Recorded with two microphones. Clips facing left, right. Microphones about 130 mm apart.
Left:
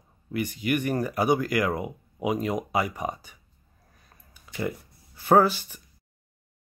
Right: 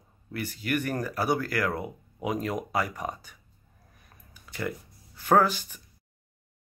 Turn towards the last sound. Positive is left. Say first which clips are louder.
# left 3 dB
turn(degrees=10)  # may be behind; listen again after turning